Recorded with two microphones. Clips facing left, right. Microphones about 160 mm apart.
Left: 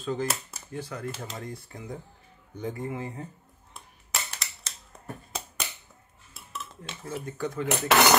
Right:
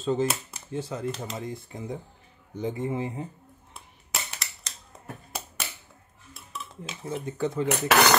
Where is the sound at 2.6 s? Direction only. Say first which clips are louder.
Right 4 dB; 20° right (ahead or behind).